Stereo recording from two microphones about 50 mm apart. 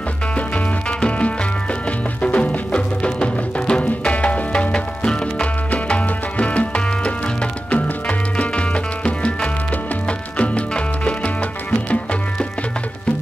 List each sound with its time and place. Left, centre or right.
0.8 s music: left